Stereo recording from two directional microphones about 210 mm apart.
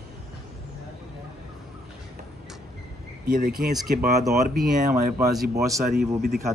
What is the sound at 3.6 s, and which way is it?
Speech, 45° right (ahead or behind).